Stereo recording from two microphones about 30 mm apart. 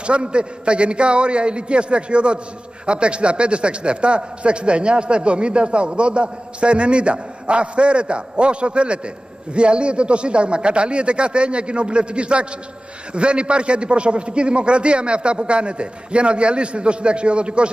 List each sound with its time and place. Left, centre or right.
0.0 s a man's voice: right